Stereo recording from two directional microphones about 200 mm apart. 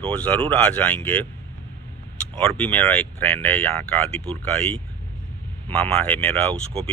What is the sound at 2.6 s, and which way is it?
Speech, 10° left (ahead or behind).